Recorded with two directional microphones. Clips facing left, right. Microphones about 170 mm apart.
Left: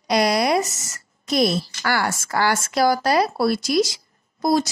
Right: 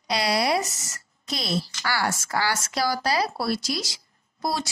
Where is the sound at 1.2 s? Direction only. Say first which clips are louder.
Left 9 dB; 50° left (ahead or behind).